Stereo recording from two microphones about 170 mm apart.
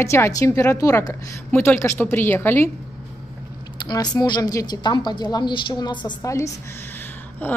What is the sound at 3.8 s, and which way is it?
A woman's voice, 25° left (ahead or behind).